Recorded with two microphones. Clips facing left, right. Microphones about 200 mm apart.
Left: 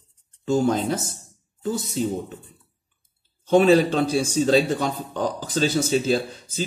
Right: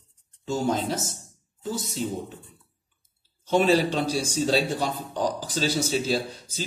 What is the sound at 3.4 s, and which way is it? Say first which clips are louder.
A man's voice: left 5 dB; 55° left (ahead or behind).